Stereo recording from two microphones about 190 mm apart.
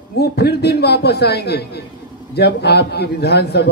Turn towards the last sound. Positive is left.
turn(degrees=60)  # may be behind; listen again after turning